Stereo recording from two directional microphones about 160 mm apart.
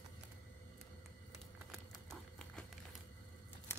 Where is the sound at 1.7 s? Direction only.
5° left (ahead or behind).